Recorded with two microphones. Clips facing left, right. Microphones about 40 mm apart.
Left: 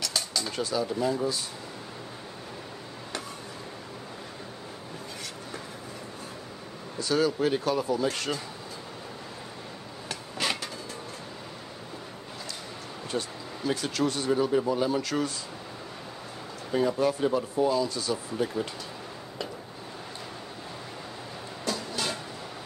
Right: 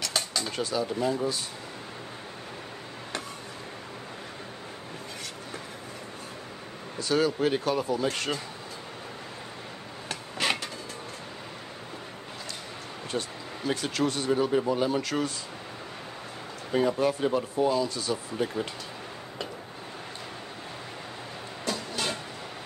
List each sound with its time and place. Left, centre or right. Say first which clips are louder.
0.0 s a sound: right 1 dB; right
7.0 s speech: even; right
10.0 s a sound: right 2 dB; right
13.1 s speech: even; right
16.9 s speech: even; right
21.6 s vehicle: even; right